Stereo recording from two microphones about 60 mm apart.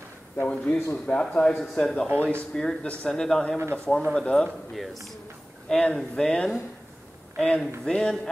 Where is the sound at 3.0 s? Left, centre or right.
Centre.